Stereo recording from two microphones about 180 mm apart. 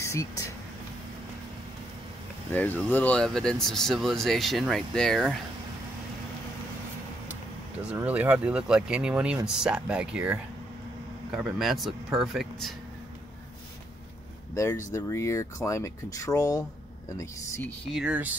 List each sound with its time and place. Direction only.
0.0 s a sound: 15° left (ahead or behind)
2.5 s speech: 10° left (ahead or behind)
7.9 s speech: 10° right (ahead or behind)
14.5 s speech: 15° left (ahead or behind)
17.8 s speech: 5° right (ahead or behind)